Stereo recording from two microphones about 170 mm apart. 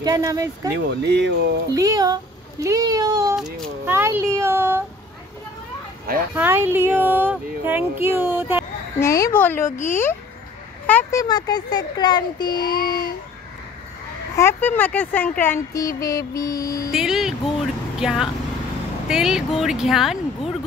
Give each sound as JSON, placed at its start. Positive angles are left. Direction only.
{"t": 0.0, "sound": "speech", "side_deg": -20}
{"t": 0.7, "sound": "speech", "side_deg": -80}
{"t": 1.7, "sound": "speech", "side_deg": -20}
{"t": 3.3, "sound": "speech", "side_deg": 0}
{"t": 3.8, "sound": "speech", "side_deg": -15}
{"t": 6.3, "sound": "speech", "side_deg": -10}
{"t": 9.0, "sound": "speech", "side_deg": 20}
{"t": 14.3, "sound": "speech", "side_deg": 15}
{"t": 16.9, "sound": "speech", "side_deg": -5}